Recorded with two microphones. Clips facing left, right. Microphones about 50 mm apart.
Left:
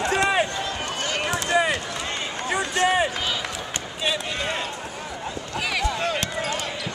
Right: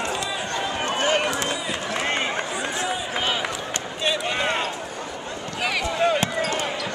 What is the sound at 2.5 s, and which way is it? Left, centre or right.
Run, left.